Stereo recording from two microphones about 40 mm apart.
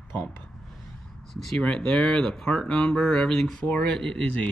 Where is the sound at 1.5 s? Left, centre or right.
Left.